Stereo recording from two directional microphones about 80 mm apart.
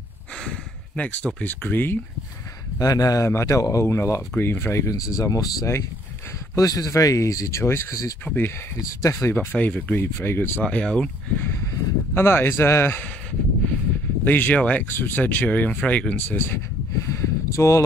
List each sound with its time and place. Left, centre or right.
0.4 s speech: centre
2.8 s speech: left
3.3 s speech: left
9.3 s speech: left
10.6 s speech: centre
11.3 s speech: left
14.2 s speech: left
14.9 s speech: left
16.3 s speech: left
17.1 s a sound: left